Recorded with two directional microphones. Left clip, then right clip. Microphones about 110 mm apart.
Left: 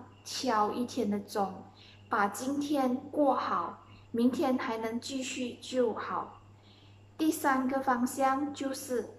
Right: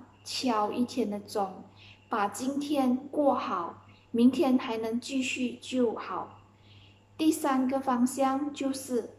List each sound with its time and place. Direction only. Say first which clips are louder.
0.2 s a woman's voice: even; 10° right (ahead or behind)
7.2 s a woman's voice: right 2 dB; 15° right (ahead or behind)